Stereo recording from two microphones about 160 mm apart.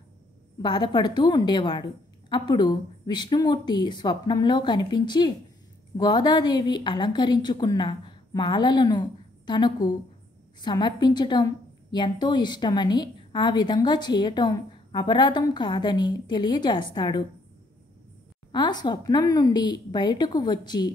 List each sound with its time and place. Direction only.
0.6 s a woman's voice: 30° left (ahead or behind)
18.5 s a woman's voice: 25° left (ahead or behind)